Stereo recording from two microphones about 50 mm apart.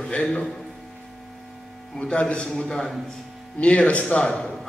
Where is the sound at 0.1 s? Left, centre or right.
Left.